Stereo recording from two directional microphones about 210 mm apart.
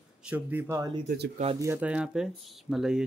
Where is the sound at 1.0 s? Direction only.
50° right (ahead or behind).